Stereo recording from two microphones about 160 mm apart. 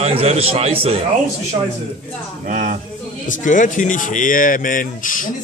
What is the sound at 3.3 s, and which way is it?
Speech, 55° left (ahead or behind).